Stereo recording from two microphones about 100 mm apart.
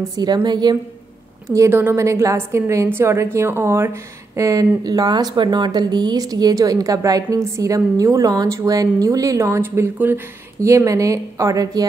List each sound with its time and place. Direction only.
0.1 s a woman's voice: 45° right (ahead or behind)
1.7 s a woman's voice: 20° right (ahead or behind); by 11.8 s 35° right (ahead or behind)